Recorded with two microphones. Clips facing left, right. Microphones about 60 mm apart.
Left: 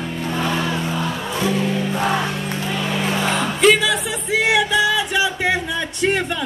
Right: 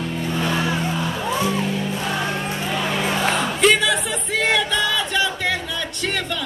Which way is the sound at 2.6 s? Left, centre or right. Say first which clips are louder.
Left 1 dB; centre.